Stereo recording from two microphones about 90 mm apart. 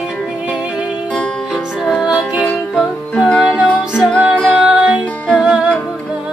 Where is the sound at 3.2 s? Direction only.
10° left (ahead or behind).